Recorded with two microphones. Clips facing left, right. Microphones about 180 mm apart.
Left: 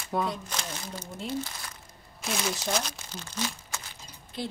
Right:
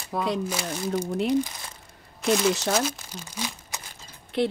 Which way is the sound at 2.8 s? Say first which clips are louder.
Right 7 dB; 10° right (ahead or behind).